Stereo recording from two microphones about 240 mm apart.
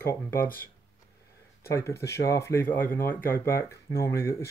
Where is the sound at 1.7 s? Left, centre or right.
Centre.